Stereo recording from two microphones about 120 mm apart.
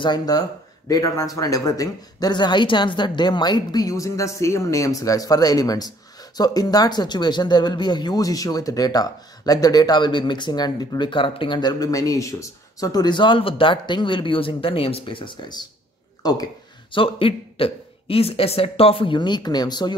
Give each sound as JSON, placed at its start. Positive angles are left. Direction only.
{"t": 0.0, "sound": "speech", "side_deg": 35}
{"t": 16.9, "sound": "speech", "side_deg": 50}